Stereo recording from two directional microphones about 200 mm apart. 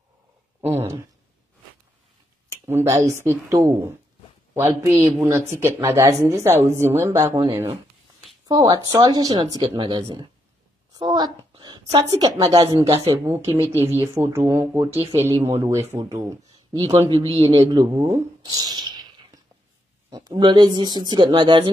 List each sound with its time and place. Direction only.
0.6 s a sound: 10° right (ahead or behind)
2.5 s a man's voice: 15° right (ahead or behind)
12.9 s a woman's voice: 30° right (ahead or behind)
13.8 s speech: 15° right (ahead or behind)
15.0 s a woman's voice: 30° right (ahead or behind)
16.2 s speech: 15° right (ahead or behind)
17.0 s a man's voice: 30° right (ahead or behind)